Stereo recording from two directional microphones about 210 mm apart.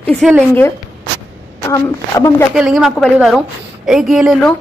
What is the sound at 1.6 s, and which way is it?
Speech, 15° left (ahead or behind).